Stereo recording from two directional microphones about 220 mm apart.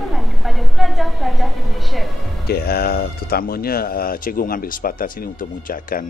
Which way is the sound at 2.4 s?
45° left (ahead or behind).